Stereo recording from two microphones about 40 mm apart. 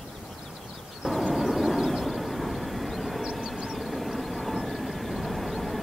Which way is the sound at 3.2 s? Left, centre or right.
Centre.